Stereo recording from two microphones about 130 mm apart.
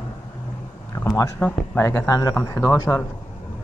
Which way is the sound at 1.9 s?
25° left (ahead or behind).